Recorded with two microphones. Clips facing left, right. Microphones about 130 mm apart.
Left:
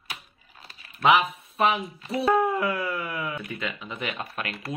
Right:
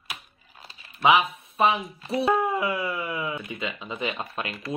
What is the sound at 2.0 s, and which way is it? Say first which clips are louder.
Speech: left 1 dB; 25° right (ahead or behind).